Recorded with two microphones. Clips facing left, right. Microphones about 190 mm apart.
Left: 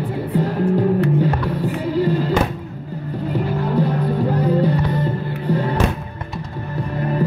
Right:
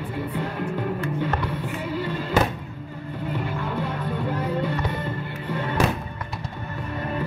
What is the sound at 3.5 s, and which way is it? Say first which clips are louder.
Music: left 9 dB; 35° left (ahead or behind).